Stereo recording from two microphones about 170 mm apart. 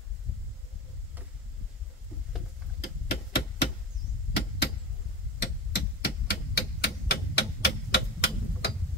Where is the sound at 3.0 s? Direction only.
70° left (ahead or behind).